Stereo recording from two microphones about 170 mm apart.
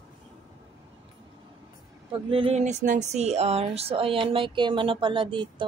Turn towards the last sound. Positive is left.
turn(degrees=-30)  # may be behind; listen again after turning